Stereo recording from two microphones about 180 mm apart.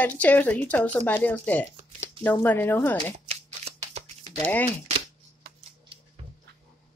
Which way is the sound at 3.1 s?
35° right (ahead or behind).